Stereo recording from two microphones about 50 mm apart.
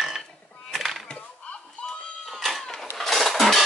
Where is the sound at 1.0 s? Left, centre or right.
Left.